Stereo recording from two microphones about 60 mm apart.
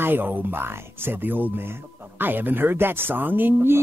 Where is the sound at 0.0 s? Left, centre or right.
Right.